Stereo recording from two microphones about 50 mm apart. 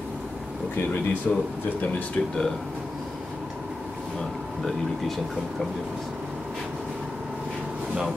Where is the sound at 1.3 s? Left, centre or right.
Centre.